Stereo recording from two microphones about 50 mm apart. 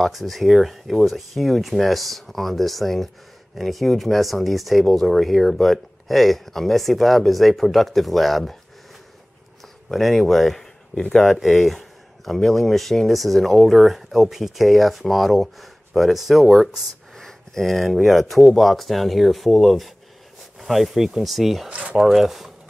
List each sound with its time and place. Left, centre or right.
0.0 s speech: centre
9.8 s speech: centre
21.6 s speech: right
21.9 s speech: centre